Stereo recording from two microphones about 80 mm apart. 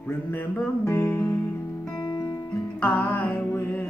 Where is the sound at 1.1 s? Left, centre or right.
Centre.